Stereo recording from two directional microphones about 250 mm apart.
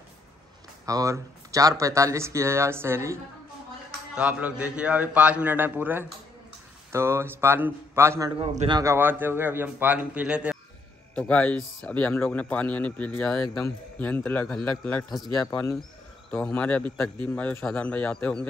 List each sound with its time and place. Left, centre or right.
0.8 s a man's voice: centre
11.1 s a man's voice: centre